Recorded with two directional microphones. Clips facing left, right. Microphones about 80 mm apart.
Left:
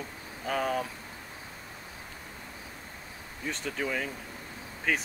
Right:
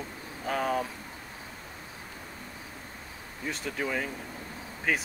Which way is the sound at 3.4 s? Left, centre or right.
Centre.